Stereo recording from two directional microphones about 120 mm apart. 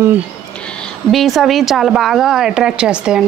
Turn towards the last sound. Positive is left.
turn(degrees=-5)  # may be behind; listen again after turning